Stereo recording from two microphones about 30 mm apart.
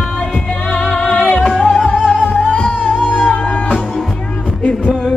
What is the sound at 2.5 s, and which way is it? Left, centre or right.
Music, left.